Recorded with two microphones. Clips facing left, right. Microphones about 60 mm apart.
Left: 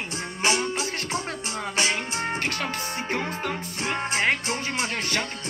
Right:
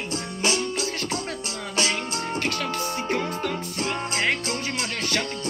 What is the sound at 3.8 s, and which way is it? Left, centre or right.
Music, left.